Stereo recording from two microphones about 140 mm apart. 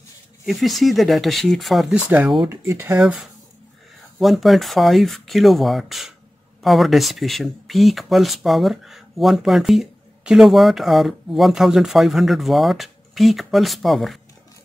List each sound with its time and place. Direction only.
0.5 s speech: centre (ahead or behind)
2.5 s speech: 20° right (ahead or behind)
3.0 s speech: 10° right (ahead or behind)